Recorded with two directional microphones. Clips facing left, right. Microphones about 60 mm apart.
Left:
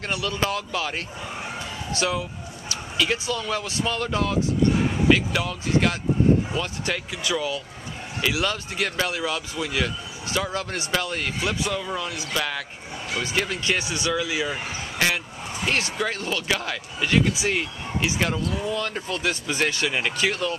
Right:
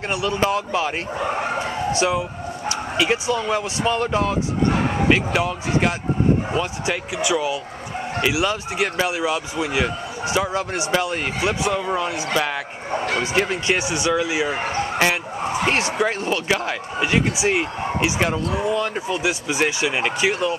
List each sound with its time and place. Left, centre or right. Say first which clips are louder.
0.1 s speech: right 5 dB; right
1.2 s speech: right 10 dB; right
1.9 s speech: right 3 dB; right
4.6 s a sound: right 4 dB; right
5.1 s speech: right 3 dB; right
12.9 s a sound: right 8 dB; right
13.2 s speech: right 5 dB; right